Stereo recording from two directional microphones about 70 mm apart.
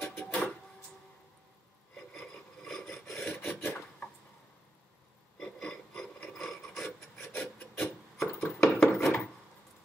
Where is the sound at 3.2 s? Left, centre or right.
Left.